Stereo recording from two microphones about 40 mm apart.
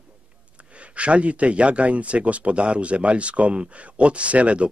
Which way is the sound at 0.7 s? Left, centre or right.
Right.